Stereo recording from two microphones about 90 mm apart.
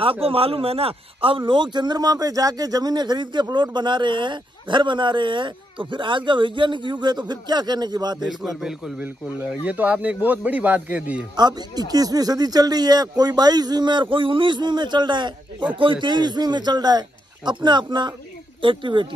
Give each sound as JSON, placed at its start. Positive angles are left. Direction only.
{"t": 0.0, "sound": "speech", "side_deg": -90}
{"t": 8.2, "sound": "a man's voice", "side_deg": -5}
{"t": 9.5, "sound": "speech", "side_deg": -15}
{"t": 11.3, "sound": "speech", "side_deg": -50}
{"t": 18.6, "sound": "speech", "side_deg": -70}